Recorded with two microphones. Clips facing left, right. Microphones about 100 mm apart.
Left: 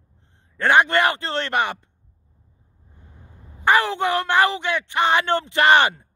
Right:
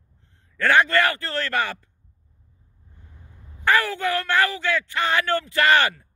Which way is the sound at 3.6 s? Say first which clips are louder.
Left 3 dB; 20° left (ahead or behind).